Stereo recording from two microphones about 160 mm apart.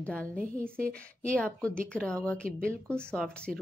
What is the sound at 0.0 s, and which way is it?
Speech, 10° left (ahead or behind).